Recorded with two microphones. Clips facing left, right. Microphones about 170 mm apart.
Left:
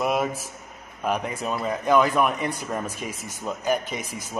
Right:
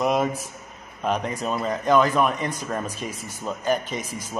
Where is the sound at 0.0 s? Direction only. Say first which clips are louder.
Right 2 dB; 5° left (ahead or behind).